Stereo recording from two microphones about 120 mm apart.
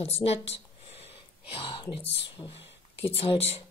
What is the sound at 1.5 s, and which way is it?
A woman's voice, 45° left (ahead or behind).